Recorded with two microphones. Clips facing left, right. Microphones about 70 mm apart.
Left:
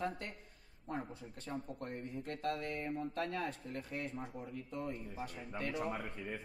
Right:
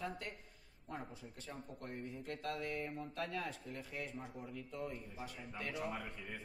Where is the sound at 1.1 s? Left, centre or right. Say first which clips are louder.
Left 6 dB; left.